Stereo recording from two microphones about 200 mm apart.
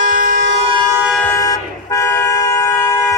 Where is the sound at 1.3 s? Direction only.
15° left (ahead or behind).